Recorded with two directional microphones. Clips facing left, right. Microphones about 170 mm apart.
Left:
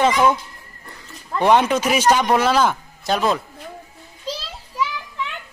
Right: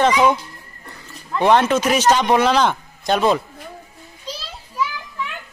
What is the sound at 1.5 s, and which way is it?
A man's voice, 10° left (ahead or behind).